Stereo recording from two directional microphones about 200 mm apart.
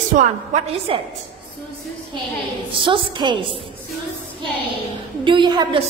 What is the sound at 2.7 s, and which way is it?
Speech, 25° right (ahead or behind).